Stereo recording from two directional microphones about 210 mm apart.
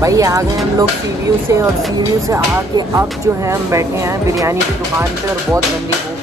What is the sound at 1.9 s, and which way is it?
Speech, 15° right (ahead or behind).